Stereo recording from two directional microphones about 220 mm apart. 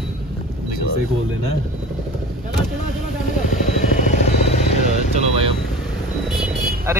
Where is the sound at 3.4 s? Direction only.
35° left (ahead or behind).